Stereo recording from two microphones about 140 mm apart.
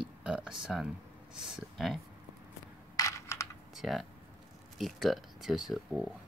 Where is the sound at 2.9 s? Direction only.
20° left (ahead or behind).